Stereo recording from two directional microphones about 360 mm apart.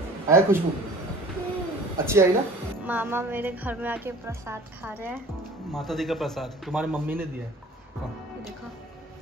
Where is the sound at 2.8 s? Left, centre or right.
Centre.